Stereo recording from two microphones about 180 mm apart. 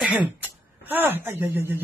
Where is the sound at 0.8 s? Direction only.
10° right (ahead or behind).